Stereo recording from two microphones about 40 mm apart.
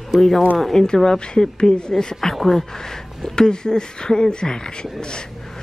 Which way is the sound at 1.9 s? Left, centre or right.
Centre.